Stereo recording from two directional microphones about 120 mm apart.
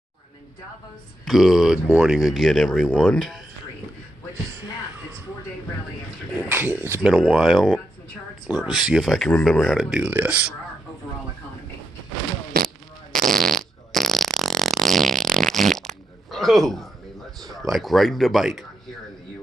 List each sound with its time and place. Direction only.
1.2 s speech: centre (ahead or behind)
6.5 s speech: 15° right (ahead or behind); by 9.8 s centre (ahead or behind)
9.8 s speech: 10° right (ahead or behind)
13.4 s fart: centre (ahead or behind)
16.3 s a sound: centre (ahead or behind)
17.4 s speech: centre (ahead or behind)